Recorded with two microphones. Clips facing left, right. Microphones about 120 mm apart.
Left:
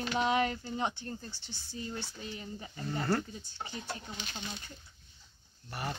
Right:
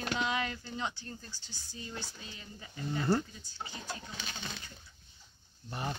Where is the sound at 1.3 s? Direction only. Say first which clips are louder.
Left 4 dB; 70° left (ahead or behind).